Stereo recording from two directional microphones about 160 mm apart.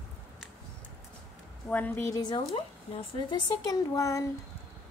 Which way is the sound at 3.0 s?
30° left (ahead or behind).